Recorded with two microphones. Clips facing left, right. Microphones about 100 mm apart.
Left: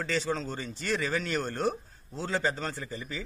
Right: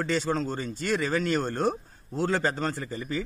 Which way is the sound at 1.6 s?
50° right (ahead or behind).